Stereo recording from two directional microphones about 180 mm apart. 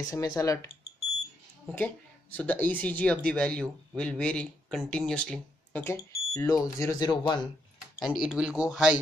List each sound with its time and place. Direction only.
0.0 s speech: 20° left (ahead or behind)
2.3 s speech: 10° left (ahead or behind)
8.0 s speech: 5° right (ahead or behind)